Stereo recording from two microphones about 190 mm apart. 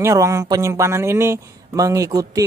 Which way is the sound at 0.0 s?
15° right (ahead or behind).